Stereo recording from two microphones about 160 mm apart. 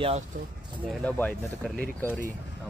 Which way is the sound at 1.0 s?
5° left (ahead or behind).